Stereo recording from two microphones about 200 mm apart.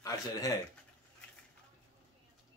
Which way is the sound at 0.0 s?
15° left (ahead or behind).